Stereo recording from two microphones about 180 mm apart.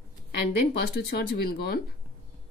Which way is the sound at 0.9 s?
65° left (ahead or behind).